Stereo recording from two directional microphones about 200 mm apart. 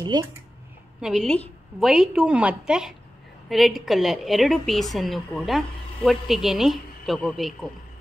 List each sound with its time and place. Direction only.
0.0 s speech: 20° right (ahead or behind)
1.0 s a woman's voice: centre (ahead or behind)